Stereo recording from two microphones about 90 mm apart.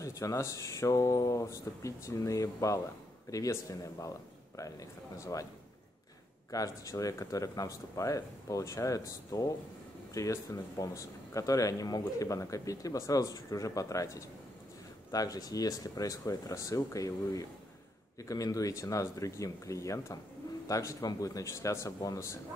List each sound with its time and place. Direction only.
0.0 s speech: 35° left (ahead or behind)
6.5 s speech: 40° left (ahead or behind)